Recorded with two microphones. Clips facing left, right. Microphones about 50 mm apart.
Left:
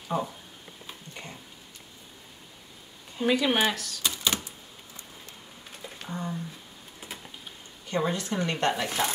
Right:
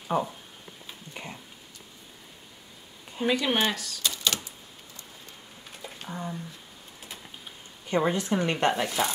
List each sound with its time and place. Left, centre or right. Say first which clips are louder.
0.1 s speech: right 2 dB; right
1.1 s a sound: right 4 dB; centre
3.3 s speech: left 1 dB; centre
4.0 s typewriter: even; centre
5.8 s a sound: left 1 dB; centre
7.9 s speech: right 3 dB; right